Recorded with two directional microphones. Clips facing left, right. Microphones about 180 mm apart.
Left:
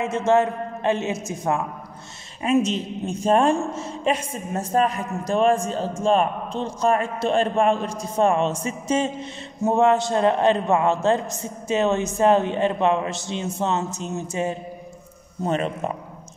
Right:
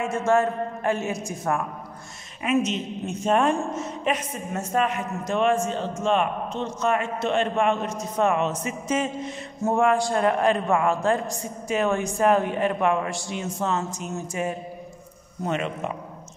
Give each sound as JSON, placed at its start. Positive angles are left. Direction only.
{"t": 0.0, "sound": "a woman's voice", "side_deg": 20}
{"t": 2.4, "sound": "a woman's voice", "side_deg": 30}